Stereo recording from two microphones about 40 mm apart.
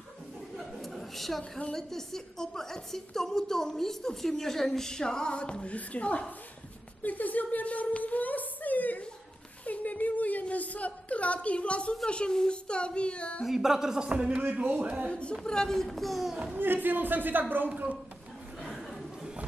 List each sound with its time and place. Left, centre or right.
0.6 s a sound: centre
1.7 s a woman's voice: centre; by 6.2 s left
7.0 s a sound: left
12.1 s speech: left
13.5 s a sound: centre
14.0 s a man's voice: right
14.4 s speech: right
15.0 s speech: left
15.4 s a woman's voice: centre
16.5 s speech: right